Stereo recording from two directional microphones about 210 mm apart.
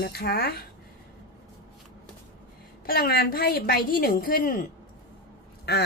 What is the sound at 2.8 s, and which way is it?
A woman's voice, 45° left (ahead or behind).